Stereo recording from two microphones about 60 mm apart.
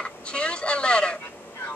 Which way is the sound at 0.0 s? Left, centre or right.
Centre.